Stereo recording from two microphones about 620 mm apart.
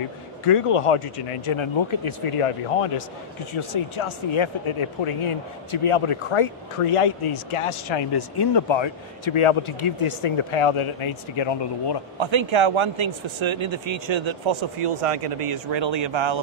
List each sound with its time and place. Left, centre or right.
0.5 s speech: left
12.2 s speech: right
14.8 s speech: right